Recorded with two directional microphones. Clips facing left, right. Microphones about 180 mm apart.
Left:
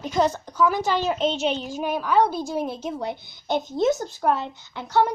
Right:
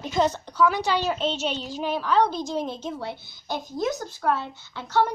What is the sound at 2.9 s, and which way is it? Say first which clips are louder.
Speech: left 4 dB; 20° left (ahead or behind).